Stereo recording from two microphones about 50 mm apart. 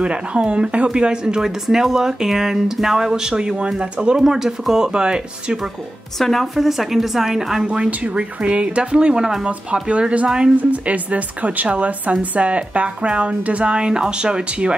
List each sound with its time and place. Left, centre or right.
0.0 s a woman's voice: right
6.1 s a woman's voice: centre
8.0 s a woman's voice: right
10.5 s a woman's voice: right